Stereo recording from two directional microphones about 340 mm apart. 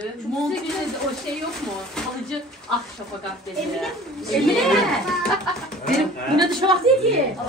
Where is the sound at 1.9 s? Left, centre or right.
Centre.